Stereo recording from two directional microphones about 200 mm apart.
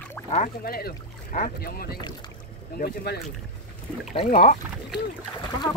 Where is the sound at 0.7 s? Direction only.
50° left (ahead or behind).